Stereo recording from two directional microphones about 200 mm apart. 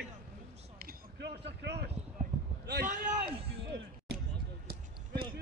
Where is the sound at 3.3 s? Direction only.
30° right (ahead or behind).